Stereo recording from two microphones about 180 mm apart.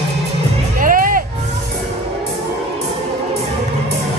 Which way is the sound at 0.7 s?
50° right (ahead or behind).